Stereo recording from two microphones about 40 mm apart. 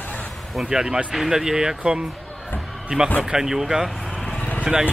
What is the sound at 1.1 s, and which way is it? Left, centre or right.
Speech, centre.